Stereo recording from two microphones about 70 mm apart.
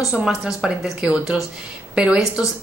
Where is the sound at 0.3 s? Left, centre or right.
Centre.